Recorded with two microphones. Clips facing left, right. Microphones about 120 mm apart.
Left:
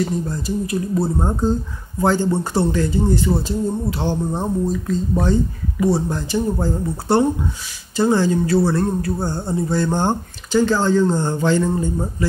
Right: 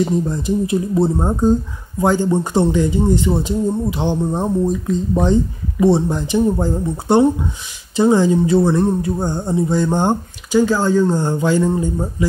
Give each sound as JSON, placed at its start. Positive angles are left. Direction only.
{"t": 0.0, "sound": "speech", "side_deg": -20}